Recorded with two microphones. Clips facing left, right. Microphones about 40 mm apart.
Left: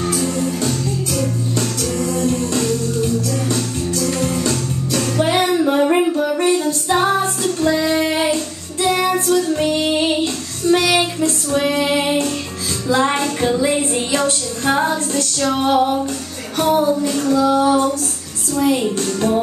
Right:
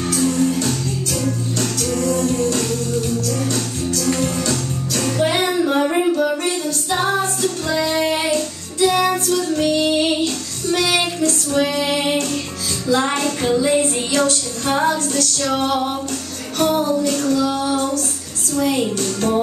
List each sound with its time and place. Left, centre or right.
0.1 s music: centre
5.1 s music: centre
7.0 s music: left
7.9 s child singing: centre
9.1 s child singing: left
12.9 s music: left
13.4 s a sound: centre
14.1 s female singing: left
16.5 s music: centre
17.6 s female singing: left
18.6 s a woman's voice: centre